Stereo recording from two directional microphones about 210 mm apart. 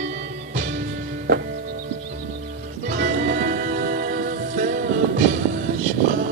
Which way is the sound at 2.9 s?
40° right (ahead or behind).